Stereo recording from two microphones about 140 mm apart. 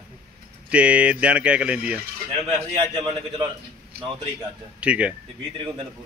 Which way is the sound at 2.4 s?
40° right (ahead or behind).